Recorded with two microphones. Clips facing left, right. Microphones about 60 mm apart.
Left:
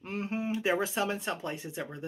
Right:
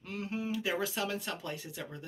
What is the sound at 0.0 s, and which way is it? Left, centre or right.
Speech, left.